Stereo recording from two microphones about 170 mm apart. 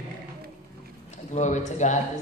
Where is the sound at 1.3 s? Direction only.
45° left (ahead or behind).